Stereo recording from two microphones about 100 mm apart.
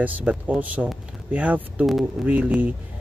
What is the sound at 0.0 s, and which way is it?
Speech, 15° right (ahead or behind).